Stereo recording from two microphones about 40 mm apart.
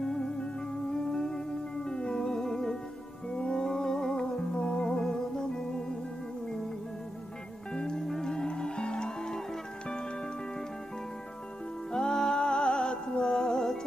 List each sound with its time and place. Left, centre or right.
0.0 s music: centre
3.3 s music: left
3.6 s music: centre
7.7 s music: centre
11.9 s music: centre